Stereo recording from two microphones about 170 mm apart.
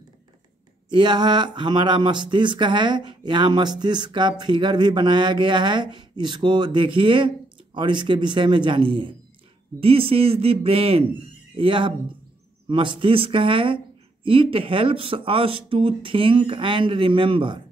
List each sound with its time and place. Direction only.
0.8 s speech: 25° right (ahead or behind)